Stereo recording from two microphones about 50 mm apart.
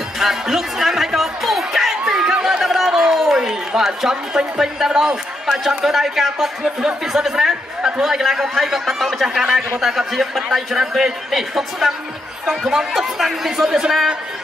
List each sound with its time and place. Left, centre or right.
0.2 s music: centre
2.6 s a sound: centre
5.9 s a man's voice: centre
9.3 s a man's voice: centre